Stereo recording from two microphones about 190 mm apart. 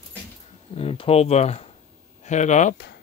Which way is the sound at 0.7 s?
30° left (ahead or behind).